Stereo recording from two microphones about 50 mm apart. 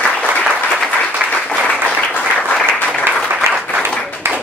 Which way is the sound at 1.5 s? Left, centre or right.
Left.